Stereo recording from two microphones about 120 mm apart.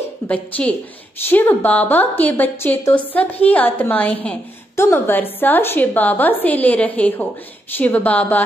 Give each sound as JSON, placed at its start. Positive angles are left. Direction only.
{"t": 0.3, "sound": "a woman's voice", "side_deg": 10}